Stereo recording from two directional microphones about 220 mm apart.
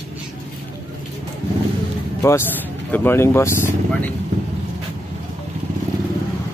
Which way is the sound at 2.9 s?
10° left (ahead or behind).